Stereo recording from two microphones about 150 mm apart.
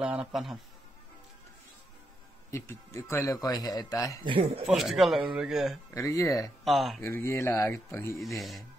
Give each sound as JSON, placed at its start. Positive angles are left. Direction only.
{"t": 0.0, "sound": "speech", "side_deg": -5}
{"t": 2.5, "sound": "speech", "side_deg": 20}
{"t": 4.2, "sound": "speech", "side_deg": -35}
{"t": 4.6, "sound": "speech", "side_deg": 0}
{"t": 5.9, "sound": "speech", "side_deg": 20}
{"t": 6.6, "sound": "speech", "side_deg": 0}
{"t": 7.0, "sound": "speech", "side_deg": 15}
{"t": 8.2, "sound": "speech", "side_deg": 0}